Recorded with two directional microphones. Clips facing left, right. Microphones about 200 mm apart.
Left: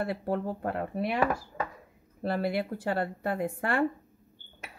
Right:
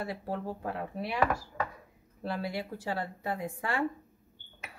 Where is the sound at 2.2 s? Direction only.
60° left (ahead or behind).